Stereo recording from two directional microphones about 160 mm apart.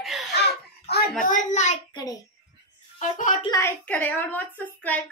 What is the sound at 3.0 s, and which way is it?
Speech, 50° left (ahead or behind).